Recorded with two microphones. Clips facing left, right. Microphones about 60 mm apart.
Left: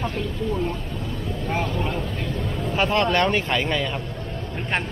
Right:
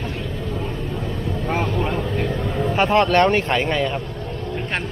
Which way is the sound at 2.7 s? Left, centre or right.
Right.